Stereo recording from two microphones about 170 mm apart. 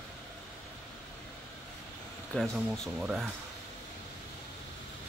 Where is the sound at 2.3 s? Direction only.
Centre (ahead or behind).